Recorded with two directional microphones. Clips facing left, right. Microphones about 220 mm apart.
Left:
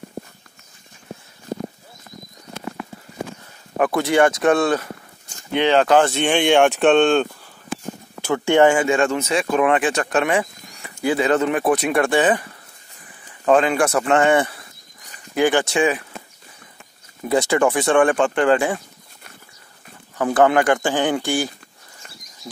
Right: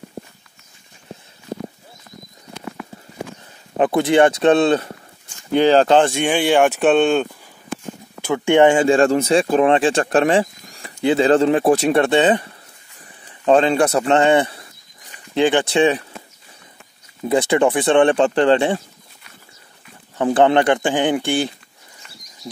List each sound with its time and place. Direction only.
3.7 s speech: 20° right (ahead or behind)
5.5 s speech: 40° right (ahead or behind)
5.9 s speech: 15° right (ahead or behind)
8.3 s speech: 15° right (ahead or behind)
13.5 s speech: 30° right (ahead or behind)
15.7 s speech: 30° right (ahead or behind)
17.2 s speech: 20° right (ahead or behind)
20.2 s speech: 25° right (ahead or behind)
22.2 s a sound: 40° right (ahead or behind)